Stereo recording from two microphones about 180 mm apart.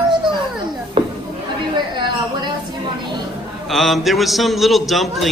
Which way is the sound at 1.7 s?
25° right (ahead or behind).